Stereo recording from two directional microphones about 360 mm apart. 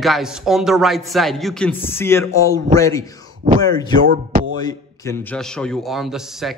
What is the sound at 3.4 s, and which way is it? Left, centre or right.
Speech, right.